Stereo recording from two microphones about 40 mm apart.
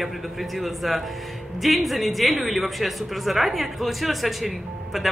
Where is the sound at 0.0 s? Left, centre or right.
Centre.